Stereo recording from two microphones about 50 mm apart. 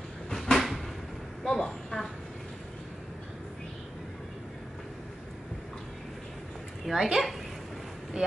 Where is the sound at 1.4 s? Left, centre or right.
Centre.